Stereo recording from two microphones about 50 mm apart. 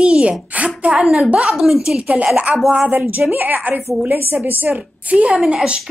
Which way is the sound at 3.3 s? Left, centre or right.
Right.